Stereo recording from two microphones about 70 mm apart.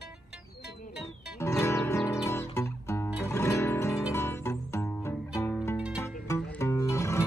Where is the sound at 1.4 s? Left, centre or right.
Left.